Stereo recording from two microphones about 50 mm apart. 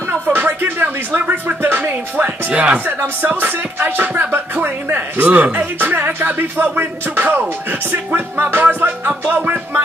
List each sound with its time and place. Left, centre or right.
0.3 s a sound: right
1.2 s speech: right
1.6 s speech: right
2.2 s speech: right
3.0 s speech: right